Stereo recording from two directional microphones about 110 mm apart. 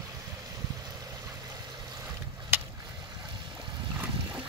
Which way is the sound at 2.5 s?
15° right (ahead or behind).